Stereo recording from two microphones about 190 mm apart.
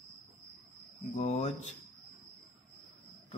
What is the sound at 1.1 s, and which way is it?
Speech, 35° left (ahead or behind).